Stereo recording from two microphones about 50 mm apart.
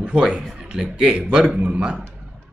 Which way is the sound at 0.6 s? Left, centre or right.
Centre.